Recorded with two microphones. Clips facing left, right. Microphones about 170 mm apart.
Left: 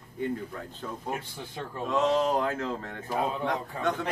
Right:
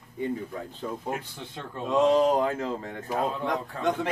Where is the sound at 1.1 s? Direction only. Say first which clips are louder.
Right 1 dB; 5° left (ahead or behind).